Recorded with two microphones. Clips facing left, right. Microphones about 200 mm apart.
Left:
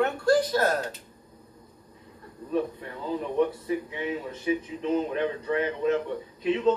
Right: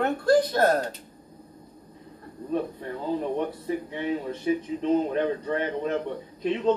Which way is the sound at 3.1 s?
35° right (ahead or behind).